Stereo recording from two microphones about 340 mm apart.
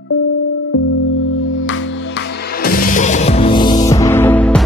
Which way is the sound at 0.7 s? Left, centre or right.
Left.